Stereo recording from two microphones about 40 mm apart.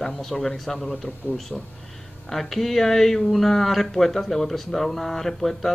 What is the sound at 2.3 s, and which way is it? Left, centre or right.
Speech, centre.